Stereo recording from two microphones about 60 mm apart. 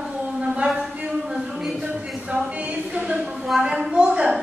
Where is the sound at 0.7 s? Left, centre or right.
Centre.